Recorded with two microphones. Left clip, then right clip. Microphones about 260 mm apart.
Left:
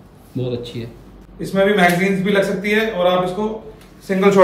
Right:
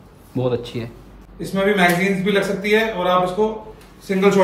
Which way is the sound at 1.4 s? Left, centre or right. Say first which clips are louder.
Left 3 dB; centre.